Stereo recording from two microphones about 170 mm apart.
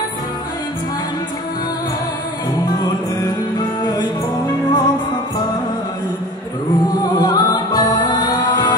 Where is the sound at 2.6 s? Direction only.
25° left (ahead or behind).